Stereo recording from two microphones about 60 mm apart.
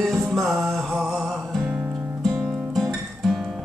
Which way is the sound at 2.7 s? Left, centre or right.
Centre.